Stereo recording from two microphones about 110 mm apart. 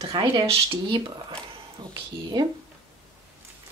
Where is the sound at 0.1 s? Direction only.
50° right (ahead or behind).